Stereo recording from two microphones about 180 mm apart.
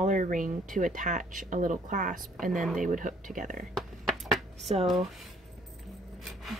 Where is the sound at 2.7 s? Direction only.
45° right (ahead or behind).